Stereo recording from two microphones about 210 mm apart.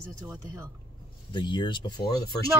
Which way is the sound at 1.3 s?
20° left (ahead or behind).